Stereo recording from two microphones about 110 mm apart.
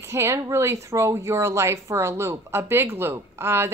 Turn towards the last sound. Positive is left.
turn(degrees=-20)  # may be behind; listen again after turning